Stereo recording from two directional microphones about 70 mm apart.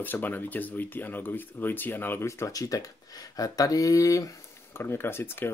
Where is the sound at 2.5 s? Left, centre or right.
Left.